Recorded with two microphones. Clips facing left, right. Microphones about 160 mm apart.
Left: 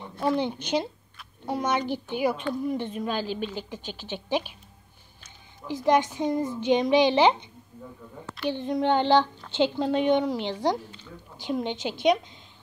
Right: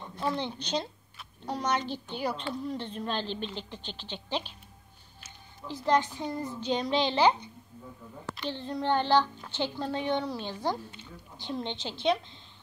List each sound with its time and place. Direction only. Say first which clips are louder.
0.2 s speech: left 6 dB; 15° left (ahead or behind)
5.9 s a child's voice: left 5 dB; 15° left (ahead or behind)
10.4 s speech: left 6 dB; 75° left (ahead or behind)
11.3 s speech: left 6 dB; 15° left (ahead or behind)